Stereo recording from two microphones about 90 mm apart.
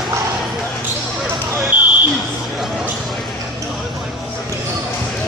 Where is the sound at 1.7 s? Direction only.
20° right (ahead or behind).